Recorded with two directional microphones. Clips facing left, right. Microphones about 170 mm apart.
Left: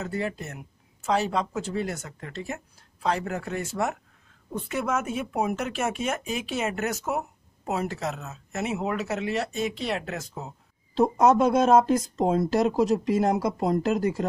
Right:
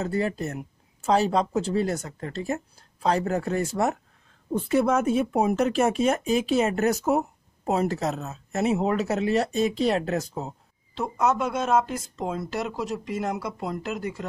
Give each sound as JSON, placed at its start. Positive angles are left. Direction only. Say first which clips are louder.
{"t": 0.0, "sound": "speech", "louder": "right 4 dB", "side_deg": -35}
{"t": 11.0, "sound": "speech", "louder": "left 5 dB", "side_deg": 35}